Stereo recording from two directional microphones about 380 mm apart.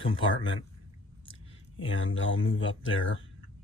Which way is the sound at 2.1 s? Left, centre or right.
Left.